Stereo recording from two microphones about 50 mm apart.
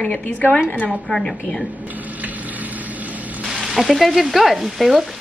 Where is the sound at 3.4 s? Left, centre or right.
Centre.